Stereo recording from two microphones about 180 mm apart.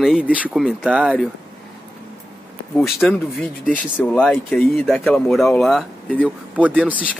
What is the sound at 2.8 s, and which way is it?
Speech, centre (ahead or behind).